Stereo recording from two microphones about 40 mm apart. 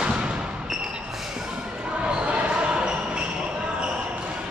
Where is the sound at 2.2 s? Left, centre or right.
Right.